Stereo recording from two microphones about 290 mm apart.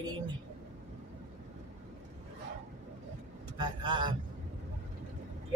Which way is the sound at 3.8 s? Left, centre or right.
Centre.